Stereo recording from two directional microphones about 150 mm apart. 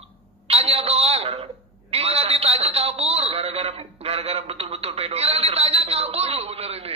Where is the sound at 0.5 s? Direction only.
40° right (ahead or behind).